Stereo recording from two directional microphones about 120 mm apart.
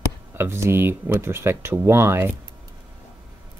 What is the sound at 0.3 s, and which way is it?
Speech, 20° right (ahead or behind).